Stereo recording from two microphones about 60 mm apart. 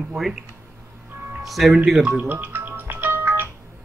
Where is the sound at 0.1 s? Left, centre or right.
Centre.